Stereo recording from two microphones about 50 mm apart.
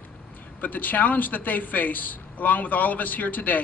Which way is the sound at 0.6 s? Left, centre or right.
Left.